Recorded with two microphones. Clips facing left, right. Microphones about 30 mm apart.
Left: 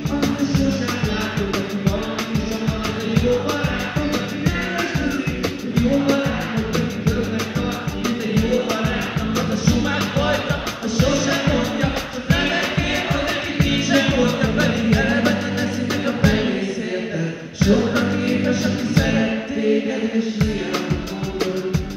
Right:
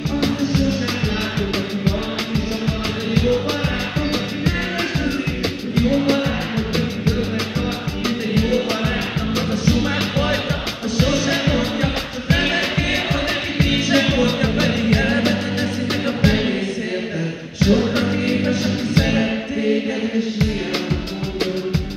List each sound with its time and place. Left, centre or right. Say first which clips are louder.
1.9 s music: right 1 dB; right
8.5 s music: even; right
17.6 s music: even; right
19.0 s music: even; centre